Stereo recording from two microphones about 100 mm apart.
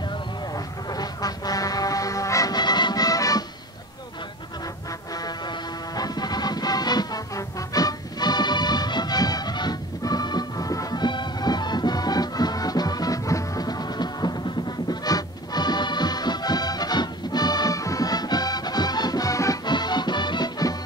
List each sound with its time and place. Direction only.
0.8 s music: 40° left (ahead or behind)
5.1 s music: 40° left (ahead or behind)
19.6 s music: 45° left (ahead or behind)